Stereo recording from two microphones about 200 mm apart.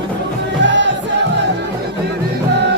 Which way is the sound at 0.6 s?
65° right (ahead or behind).